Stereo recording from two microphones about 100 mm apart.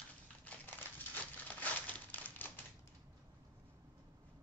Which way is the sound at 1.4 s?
15° left (ahead or behind).